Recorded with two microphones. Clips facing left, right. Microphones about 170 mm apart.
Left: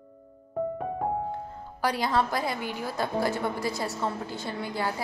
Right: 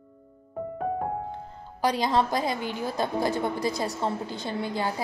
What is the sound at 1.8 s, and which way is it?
A woman's voice, 20° right (ahead or behind).